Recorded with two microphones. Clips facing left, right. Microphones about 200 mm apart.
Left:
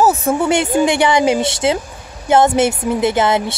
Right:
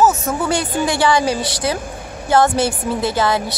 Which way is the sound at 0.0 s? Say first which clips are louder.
Left 2 dB; 35° left (ahead or behind).